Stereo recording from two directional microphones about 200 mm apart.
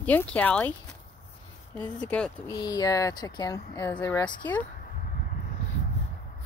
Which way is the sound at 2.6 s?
20° left (ahead or behind).